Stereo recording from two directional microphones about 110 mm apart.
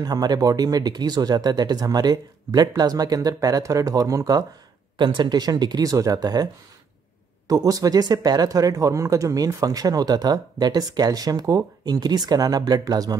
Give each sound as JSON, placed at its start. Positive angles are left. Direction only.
{"t": 0.0, "sound": "speech", "side_deg": -35}
{"t": 4.9, "sound": "speech", "side_deg": -45}